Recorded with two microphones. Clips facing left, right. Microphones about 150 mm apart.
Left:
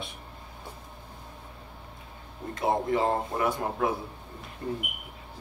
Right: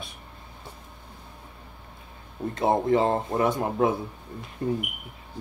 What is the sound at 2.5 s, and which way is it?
Speech, 25° right (ahead or behind).